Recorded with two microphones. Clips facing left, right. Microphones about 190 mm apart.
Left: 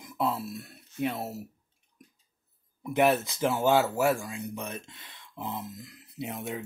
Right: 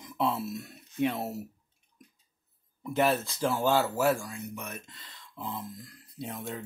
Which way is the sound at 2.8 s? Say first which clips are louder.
Left 3 dB; 15° left (ahead or behind).